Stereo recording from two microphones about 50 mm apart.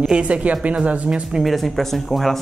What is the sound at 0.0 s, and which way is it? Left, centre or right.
A woman's voice, right.